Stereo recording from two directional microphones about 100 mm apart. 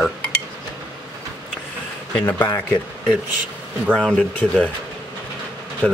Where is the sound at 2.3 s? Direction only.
25° left (ahead or behind).